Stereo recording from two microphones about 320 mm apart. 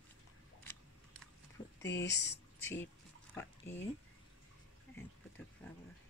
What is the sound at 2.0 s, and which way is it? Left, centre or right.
Speech, left.